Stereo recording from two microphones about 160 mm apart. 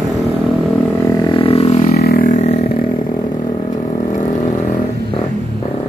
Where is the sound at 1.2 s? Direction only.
35° left (ahead or behind).